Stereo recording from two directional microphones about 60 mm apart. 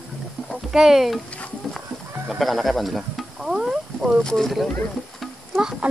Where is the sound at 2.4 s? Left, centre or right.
Centre.